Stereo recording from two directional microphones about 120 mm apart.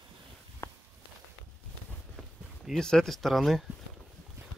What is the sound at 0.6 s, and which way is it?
Walk, 25° left (ahead or behind).